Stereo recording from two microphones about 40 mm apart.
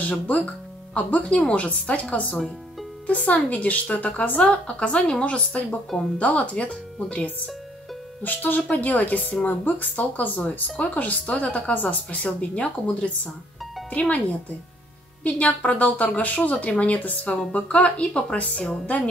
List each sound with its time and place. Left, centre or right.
0.0 s speech: left
4.6 s a woman's voice: left
8.2 s speech: left
15.2 s speech: left